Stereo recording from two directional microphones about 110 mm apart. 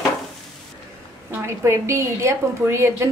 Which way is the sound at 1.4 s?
25° right (ahead or behind).